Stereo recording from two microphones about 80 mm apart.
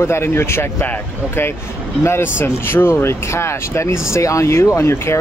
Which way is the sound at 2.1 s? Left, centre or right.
Left.